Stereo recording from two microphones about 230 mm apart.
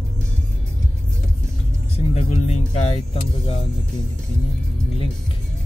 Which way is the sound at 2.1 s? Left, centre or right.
Left.